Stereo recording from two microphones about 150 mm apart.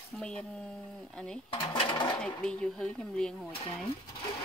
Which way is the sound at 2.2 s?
5° left (ahead or behind).